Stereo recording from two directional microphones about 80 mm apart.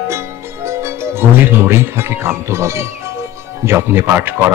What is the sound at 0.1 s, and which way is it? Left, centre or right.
Music, right.